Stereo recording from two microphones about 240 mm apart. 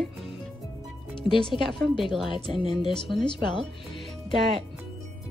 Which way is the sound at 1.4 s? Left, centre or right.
Centre.